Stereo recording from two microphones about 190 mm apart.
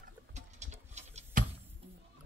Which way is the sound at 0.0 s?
40° right (ahead or behind).